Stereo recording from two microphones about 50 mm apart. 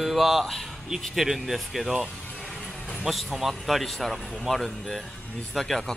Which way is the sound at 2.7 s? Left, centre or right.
Left.